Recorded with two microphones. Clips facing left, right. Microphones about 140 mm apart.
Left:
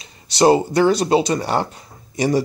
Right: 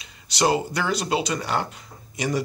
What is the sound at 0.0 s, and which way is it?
Speech, 35° left (ahead or behind).